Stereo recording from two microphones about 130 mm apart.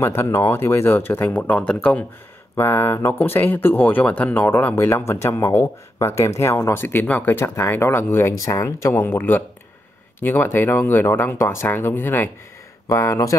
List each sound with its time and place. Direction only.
0.0 s speech: 20° left (ahead or behind)
2.5 s speech: 20° left (ahead or behind)